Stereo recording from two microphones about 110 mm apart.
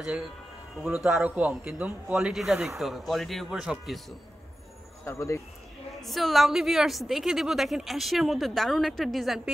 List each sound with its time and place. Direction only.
0.8 s a man's voice: 5° right (ahead or behind)
5.0 s speech: 25° left (ahead or behind)
6.0 s a woman's voice: centre (ahead or behind)